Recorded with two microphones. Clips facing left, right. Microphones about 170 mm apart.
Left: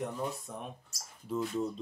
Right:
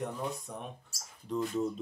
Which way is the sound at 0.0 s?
Centre (ahead or behind).